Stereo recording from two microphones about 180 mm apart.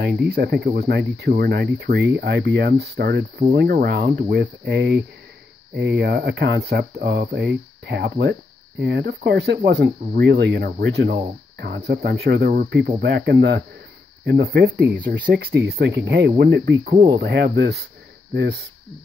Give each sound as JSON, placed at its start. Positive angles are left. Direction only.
{"t": 0.0, "sound": "speech", "side_deg": -65}
{"t": 13.0, "sound": "speech", "side_deg": -70}